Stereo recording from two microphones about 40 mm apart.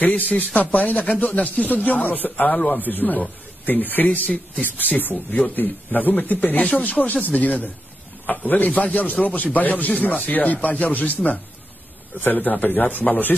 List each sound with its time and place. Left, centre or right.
0.0 s speech: left
2.5 s speech: left
2.8 s speech: left
13.3 s speech: left